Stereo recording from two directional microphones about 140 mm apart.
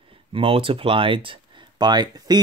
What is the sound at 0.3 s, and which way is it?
Speech, 40° right (ahead or behind).